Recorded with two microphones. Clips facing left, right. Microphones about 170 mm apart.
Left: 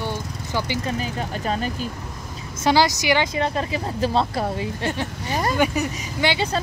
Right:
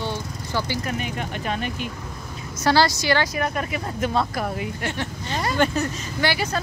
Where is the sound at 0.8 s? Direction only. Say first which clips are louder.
Left 2 dB; 30° left (ahead or behind).